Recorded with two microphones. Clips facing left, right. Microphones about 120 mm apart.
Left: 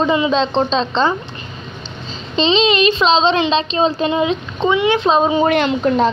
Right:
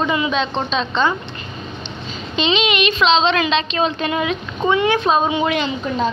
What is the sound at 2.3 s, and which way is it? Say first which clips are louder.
A woman's voice: left 4 dB; 30° left (ahead or behind).